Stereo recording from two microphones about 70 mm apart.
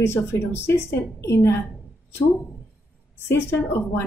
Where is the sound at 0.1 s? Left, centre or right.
Left.